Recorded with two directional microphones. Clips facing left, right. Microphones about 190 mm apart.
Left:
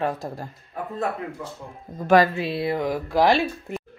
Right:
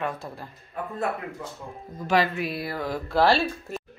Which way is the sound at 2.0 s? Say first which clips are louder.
Left 6 dB; 50° left (ahead or behind).